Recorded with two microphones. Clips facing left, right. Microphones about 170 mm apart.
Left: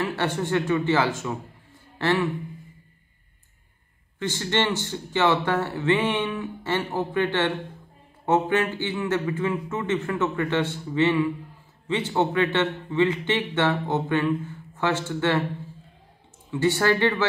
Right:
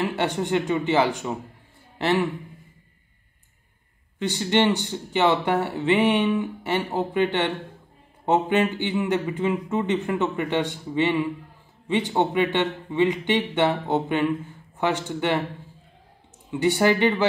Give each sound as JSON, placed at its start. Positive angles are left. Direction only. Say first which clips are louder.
{"t": 0.0, "sound": "speech", "louder": "right 1 dB", "side_deg": -20}
{"t": 4.2, "sound": "speech", "louder": "right 4 dB", "side_deg": -15}
{"t": 16.4, "sound": "speech", "louder": "right 2 dB", "side_deg": -15}